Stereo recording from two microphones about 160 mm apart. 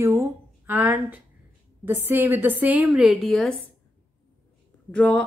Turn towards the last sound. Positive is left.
turn(degrees=10)  # may be behind; listen again after turning